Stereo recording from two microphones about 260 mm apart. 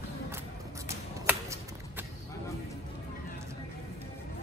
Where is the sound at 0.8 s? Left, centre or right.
Centre.